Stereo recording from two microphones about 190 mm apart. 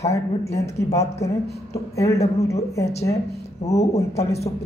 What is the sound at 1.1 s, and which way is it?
Speech, 35° left (ahead or behind).